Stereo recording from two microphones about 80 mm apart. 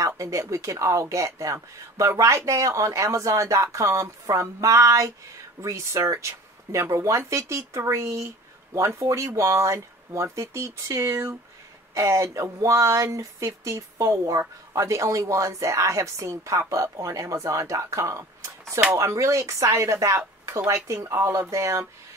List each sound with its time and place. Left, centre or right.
0.0 s speech: right